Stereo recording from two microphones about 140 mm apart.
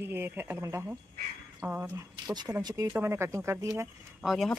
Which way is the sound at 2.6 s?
30° right (ahead or behind).